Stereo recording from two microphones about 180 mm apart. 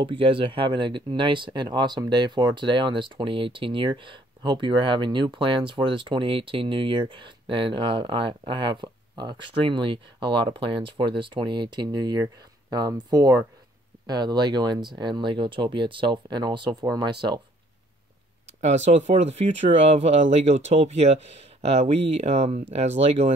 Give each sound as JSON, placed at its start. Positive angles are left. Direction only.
{"t": 0.0, "sound": "speech", "side_deg": -30}
{"t": 18.9, "sound": "speech", "side_deg": -40}